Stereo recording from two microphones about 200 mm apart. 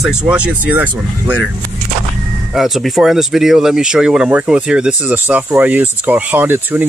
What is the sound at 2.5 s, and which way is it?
Speech, centre (ahead or behind).